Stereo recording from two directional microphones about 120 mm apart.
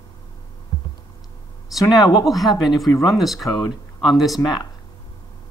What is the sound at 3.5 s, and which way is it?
Speech, 35° left (ahead or behind).